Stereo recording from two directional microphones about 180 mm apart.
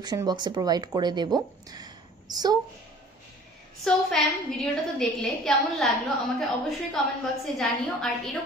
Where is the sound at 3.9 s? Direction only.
5° left (ahead or behind).